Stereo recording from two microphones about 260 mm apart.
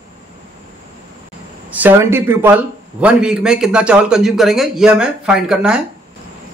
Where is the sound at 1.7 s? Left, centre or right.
Centre.